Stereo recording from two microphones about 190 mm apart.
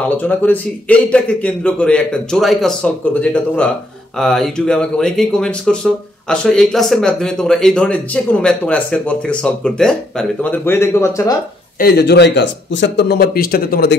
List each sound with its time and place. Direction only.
0.2 s a man's voice: 10° left (ahead or behind)
11.8 s speech: 60° left (ahead or behind)